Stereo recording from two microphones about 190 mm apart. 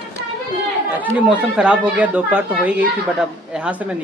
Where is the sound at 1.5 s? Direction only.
5° right (ahead or behind).